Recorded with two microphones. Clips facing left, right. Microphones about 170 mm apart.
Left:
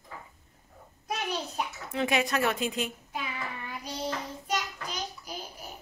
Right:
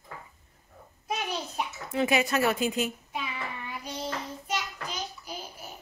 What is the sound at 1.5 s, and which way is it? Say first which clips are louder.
A child's voice: right 2 dB; 5° right (ahead or behind).